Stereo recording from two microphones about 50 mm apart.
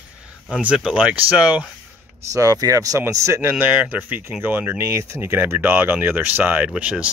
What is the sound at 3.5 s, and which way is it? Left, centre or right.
Speech, right.